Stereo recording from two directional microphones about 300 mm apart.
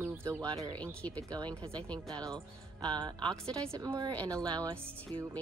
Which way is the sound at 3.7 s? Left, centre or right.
Centre.